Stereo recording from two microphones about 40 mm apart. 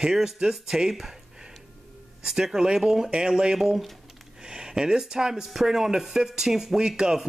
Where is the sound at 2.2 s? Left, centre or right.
Centre.